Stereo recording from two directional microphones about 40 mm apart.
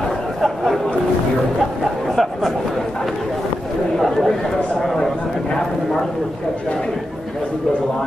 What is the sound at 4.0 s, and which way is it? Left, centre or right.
Chatter, centre.